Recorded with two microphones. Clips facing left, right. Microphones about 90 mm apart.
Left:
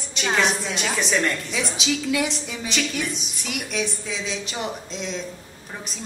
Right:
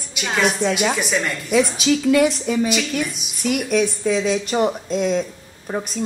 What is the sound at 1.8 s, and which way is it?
Speech, 45° right (ahead or behind).